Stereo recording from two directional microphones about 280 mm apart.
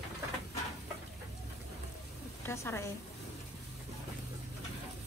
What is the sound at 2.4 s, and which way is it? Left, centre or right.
Speech, centre.